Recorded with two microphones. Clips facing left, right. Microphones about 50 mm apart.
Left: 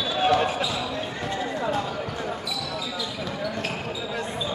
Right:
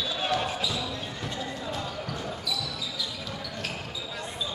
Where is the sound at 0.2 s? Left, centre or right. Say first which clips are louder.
Left 8 dB; left.